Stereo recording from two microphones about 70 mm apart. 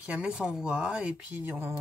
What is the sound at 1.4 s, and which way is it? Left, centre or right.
Speech, right.